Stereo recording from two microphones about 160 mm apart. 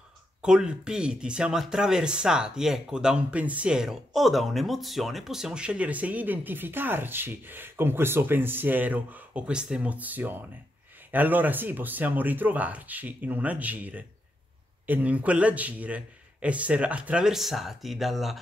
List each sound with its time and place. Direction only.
0.4 s speech: 5° right (ahead or behind)